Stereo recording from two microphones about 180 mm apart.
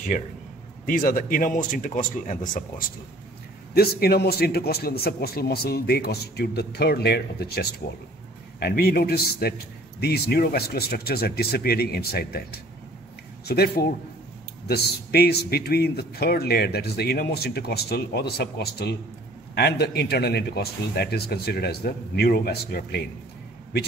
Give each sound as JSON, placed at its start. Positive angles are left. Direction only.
{"t": 0.8, "sound": "speech", "side_deg": 50}
{"t": 3.7, "sound": "speech", "side_deg": 60}